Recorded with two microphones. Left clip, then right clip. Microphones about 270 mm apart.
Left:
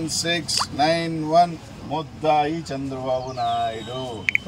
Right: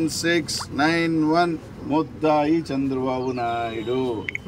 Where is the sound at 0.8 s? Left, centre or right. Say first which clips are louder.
Right 5 dB; centre.